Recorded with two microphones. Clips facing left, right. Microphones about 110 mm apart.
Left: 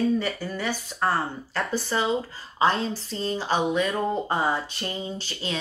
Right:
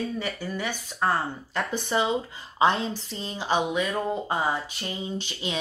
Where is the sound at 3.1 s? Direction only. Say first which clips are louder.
Left 2 dB; 15° right (ahead or behind).